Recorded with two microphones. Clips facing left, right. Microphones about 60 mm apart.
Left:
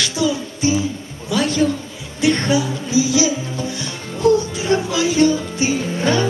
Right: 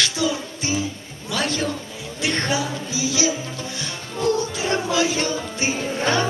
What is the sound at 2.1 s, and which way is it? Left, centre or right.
Music, right.